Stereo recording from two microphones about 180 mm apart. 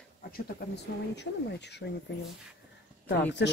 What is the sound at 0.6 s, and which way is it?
Speech, 60° left (ahead or behind).